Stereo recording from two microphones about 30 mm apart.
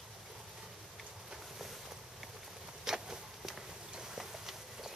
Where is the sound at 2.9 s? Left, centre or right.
Centre.